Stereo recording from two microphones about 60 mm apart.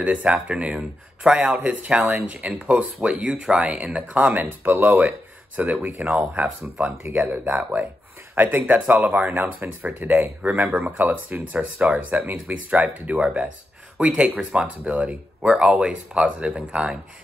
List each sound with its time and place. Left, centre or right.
0.0 s speech: right
6.8 s speech: right; by 17.0 s centre